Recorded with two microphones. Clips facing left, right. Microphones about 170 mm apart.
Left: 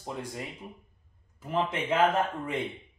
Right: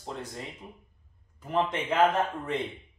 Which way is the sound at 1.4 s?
5° left (ahead or behind).